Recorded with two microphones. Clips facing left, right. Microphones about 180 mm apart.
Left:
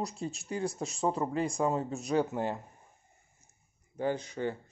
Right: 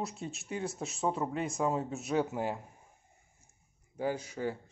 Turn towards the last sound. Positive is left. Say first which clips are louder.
# left 2 dB
turn(degrees=-5)  # may be behind; listen again after turning